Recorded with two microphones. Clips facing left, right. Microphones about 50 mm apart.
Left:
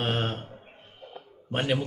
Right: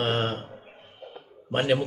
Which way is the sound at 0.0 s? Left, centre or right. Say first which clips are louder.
Right 3 dB; centre.